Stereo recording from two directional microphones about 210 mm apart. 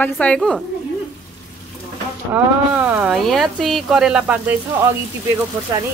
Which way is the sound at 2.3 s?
5° right (ahead or behind).